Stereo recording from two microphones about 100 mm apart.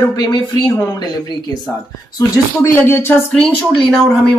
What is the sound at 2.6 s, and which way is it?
Speech, 20° left (ahead or behind).